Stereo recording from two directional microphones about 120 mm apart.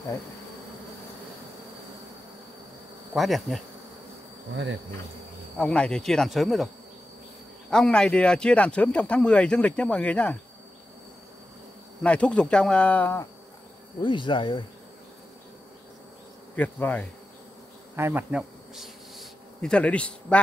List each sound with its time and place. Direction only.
3.2 s speech: centre (ahead or behind)
5.6 s speech: 5° left (ahead or behind)
7.7 s speech: 5° left (ahead or behind)
12.0 s speech: 10° left (ahead or behind)
14.0 s speech: 45° left (ahead or behind)
16.5 s speech: 15° left (ahead or behind)
17.9 s insect: 20° right (ahead or behind)
18.3 s insect: centre (ahead or behind)